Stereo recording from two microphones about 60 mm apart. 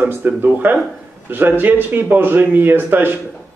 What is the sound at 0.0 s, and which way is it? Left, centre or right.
A man's voice, right.